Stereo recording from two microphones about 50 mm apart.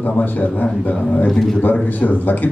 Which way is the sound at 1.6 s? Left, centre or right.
Left.